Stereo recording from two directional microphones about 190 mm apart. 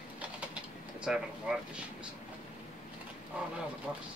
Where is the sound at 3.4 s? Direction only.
5° right (ahead or behind).